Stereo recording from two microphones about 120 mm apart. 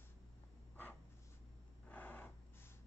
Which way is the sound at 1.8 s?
15° left (ahead or behind).